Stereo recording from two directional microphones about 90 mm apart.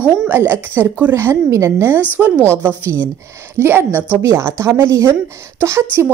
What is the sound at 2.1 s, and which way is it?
Speech, 15° right (ahead or behind).